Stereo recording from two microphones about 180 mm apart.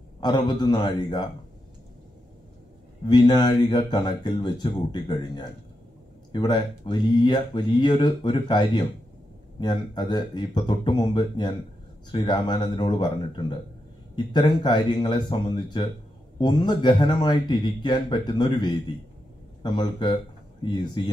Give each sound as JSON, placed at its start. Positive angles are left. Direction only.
{"t": 0.2, "sound": "speech", "side_deg": 25}
{"t": 3.1, "sound": "speech", "side_deg": 25}